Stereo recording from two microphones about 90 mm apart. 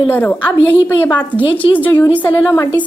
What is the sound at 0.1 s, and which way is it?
Speech, 20° left (ahead or behind).